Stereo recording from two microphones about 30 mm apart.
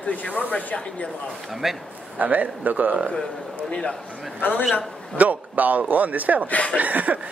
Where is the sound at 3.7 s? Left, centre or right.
Left.